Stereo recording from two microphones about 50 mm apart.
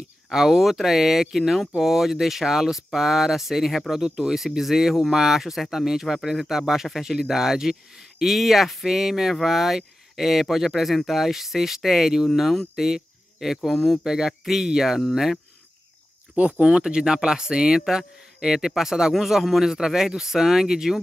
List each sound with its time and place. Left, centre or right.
0.3 s speech: centre
13.7 s speech: centre
14.0 s speech: centre
16.3 s speech: right; by 21.0 s centre